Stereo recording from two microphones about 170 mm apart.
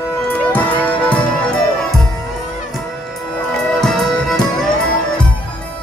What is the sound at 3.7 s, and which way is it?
Music, centre (ahead or behind).